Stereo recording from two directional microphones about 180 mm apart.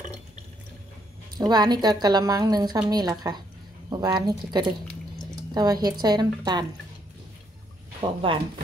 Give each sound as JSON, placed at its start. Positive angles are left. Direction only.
{"t": 1.4, "sound": "a woman's voice", "side_deg": -25}
{"t": 8.0, "sound": "a woman's voice", "side_deg": -30}